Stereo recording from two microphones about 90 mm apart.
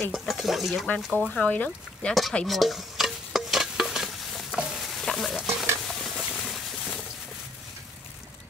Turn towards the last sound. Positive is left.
turn(degrees=0)  # may be behind; listen again after turning